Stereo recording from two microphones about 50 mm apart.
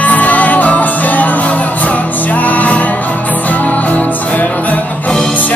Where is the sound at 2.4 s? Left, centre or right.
Left.